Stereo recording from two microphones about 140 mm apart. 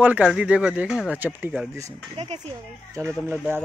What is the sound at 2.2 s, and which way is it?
Speech, 50° right (ahead or behind).